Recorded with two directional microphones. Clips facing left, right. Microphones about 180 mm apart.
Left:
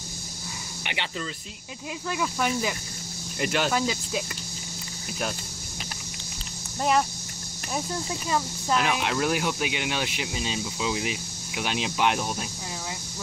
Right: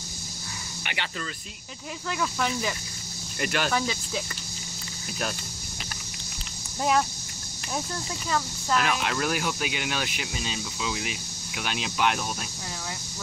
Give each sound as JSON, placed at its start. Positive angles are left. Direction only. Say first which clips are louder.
{"t": 2.1, "sound": "speech", "louder": "left 1 dB", "side_deg": 15}
{"t": 3.7, "sound": "speech", "louder": "left 2 dB", "side_deg": 10}
{"t": 6.8, "sound": "speech", "louder": "left 1 dB", "side_deg": 0}
{"t": 7.7, "sound": "speech", "louder": "left 2 dB", "side_deg": 15}